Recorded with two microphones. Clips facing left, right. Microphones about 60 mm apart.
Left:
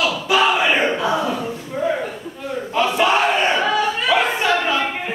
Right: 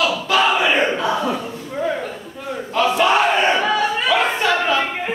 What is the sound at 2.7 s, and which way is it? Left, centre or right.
Battle cry, centre.